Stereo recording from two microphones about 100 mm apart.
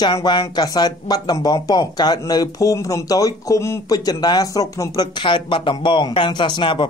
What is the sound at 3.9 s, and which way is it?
Speech, 40° left (ahead or behind).